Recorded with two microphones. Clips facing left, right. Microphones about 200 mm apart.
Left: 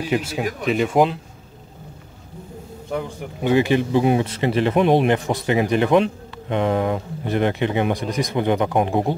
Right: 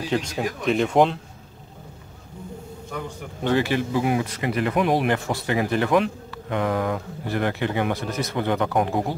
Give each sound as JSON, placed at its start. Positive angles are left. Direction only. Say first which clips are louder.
{"t": 0.1, "sound": "speech", "louder": "left 2 dB", "side_deg": 5}
{"t": 3.4, "sound": "speech", "louder": "left 4 dB", "side_deg": 15}